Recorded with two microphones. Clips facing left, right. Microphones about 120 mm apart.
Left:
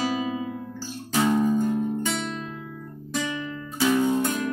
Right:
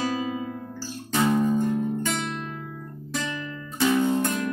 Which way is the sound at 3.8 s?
Centre (ahead or behind).